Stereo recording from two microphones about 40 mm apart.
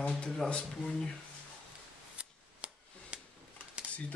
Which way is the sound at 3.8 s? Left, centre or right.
Right.